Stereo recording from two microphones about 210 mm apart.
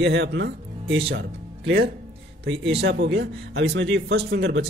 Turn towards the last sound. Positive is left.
turn(degrees=-50)  # may be behind; listen again after turning